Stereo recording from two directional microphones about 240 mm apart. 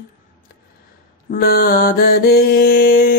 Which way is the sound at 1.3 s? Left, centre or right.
Left.